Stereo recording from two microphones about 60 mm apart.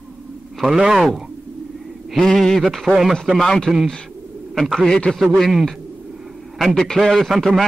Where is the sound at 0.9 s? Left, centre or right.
Centre.